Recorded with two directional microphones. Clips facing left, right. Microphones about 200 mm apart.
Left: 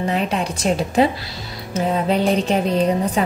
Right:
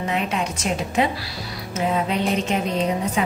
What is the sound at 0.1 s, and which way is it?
Speech, 35° left (ahead or behind).